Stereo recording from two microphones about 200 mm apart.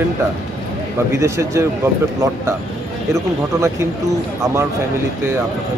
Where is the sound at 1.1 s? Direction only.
15° right (ahead or behind).